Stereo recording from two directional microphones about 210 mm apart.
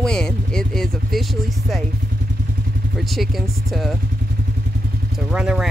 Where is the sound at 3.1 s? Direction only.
Centre (ahead or behind).